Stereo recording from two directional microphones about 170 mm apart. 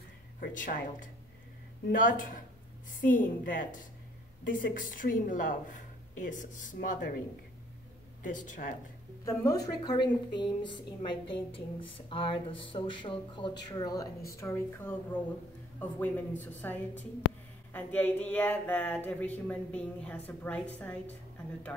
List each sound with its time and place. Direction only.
0.4 s a woman's voice: 50° left (ahead or behind)
8.2 s a woman's voice: 50° left (ahead or behind)
9.2 s speech: 20° left (ahead or behind)